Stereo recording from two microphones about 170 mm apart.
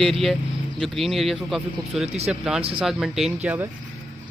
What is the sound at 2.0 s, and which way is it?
Speech, 40° right (ahead or behind).